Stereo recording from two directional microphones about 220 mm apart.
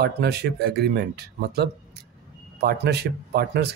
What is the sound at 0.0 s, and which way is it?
Speech, 45° right (ahead or behind).